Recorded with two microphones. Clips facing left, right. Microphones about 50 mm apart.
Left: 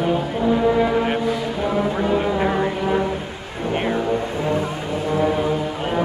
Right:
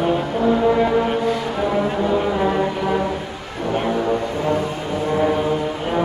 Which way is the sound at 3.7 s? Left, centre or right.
Left.